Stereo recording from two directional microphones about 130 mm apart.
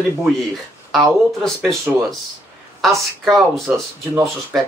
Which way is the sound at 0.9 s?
Centre (ahead or behind).